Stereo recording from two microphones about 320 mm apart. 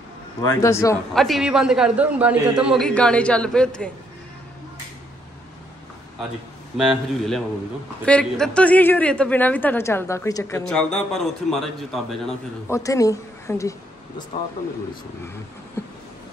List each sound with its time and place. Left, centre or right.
0.4 s a man's voice: centre
6.8 s a man's voice: centre